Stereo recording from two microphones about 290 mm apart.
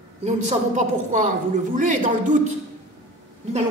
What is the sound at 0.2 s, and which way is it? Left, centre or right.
A woman's voice, right.